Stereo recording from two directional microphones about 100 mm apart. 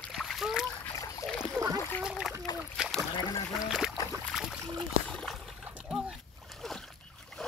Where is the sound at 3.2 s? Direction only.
45° left (ahead or behind).